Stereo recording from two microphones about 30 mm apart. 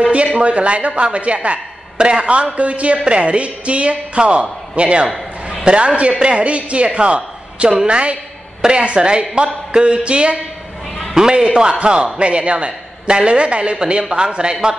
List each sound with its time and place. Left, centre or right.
0.0 s a man's voice: right
2.0 s a man's voice: right
2.5 s a man's voice: right
11.2 s speech: centre
11.8 s a man's voice: right